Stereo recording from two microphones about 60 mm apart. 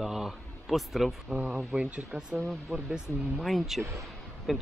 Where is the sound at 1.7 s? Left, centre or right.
Right.